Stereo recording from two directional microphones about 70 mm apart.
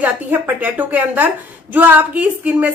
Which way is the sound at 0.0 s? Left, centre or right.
Right.